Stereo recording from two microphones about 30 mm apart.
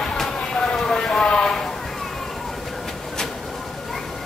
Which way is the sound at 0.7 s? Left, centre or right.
Centre.